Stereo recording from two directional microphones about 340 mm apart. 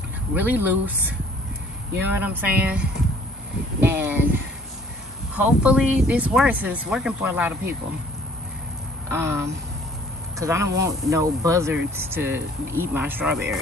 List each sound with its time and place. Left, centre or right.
0.3 s speech: centre
5.4 s speech: centre
9.1 s speech: centre